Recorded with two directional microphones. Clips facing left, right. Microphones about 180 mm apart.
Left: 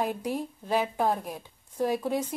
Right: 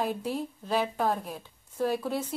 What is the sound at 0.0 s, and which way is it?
Speech, 15° left (ahead or behind).